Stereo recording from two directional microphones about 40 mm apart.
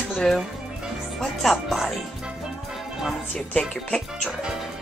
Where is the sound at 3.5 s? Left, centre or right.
Centre.